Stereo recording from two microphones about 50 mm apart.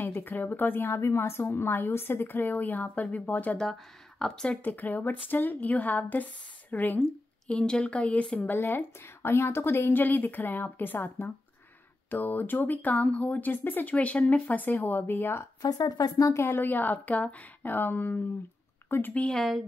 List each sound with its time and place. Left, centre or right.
0.0 s a woman's voice: left
1.0 s a woman's voice: left
3.5 s speech: centre
4.6 s speech: left
7.4 s speech: left
8.4 s a woman's voice: left
13.9 s a woman's voice: left
16.4 s a woman's voice: left